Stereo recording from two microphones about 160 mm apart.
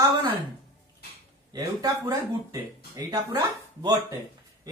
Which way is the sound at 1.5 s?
20° right (ahead or behind).